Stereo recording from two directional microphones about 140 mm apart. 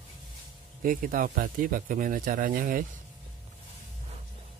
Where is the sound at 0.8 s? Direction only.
80° right.